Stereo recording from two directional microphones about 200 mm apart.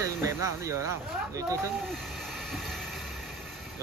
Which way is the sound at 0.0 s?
15° right (ahead or behind).